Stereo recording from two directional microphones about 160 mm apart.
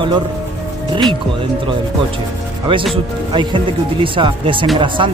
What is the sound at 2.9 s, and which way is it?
Speech, 30° right (ahead or behind).